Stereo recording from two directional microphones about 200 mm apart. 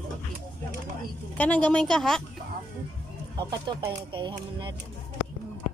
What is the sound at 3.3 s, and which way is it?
Speech, 25° right (ahead or behind).